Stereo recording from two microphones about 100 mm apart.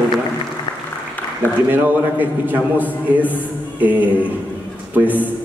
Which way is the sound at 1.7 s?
20° right (ahead or behind).